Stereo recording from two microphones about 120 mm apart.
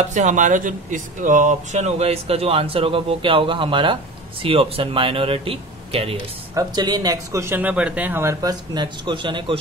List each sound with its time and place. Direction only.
0.1 s speech: 90° right; by 6.1 s 55° right (ahead or behind)
6.5 s speech: 35° right (ahead or behind)